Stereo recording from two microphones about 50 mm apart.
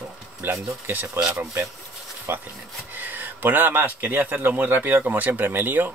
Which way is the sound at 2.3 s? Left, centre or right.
Right.